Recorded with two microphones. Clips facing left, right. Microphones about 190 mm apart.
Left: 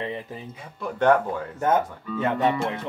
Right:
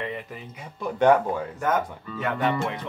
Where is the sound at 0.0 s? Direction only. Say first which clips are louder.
Left 1 dB; 30° left (ahead or behind).